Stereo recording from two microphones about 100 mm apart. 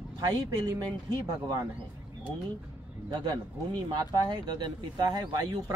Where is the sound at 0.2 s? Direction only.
40° right (ahead or behind).